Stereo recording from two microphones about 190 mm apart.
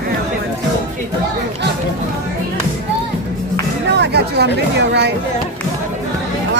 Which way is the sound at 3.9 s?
60° right (ahead or behind).